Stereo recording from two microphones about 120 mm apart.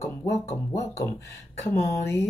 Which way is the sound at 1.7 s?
20° left (ahead or behind).